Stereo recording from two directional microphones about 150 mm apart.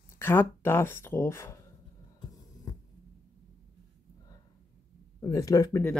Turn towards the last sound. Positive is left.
turn(degrees=20)  # may be behind; listen again after turning